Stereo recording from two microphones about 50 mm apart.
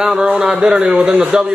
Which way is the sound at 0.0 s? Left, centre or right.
Centre.